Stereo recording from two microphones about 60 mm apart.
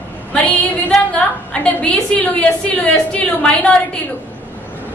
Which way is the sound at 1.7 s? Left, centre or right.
Left.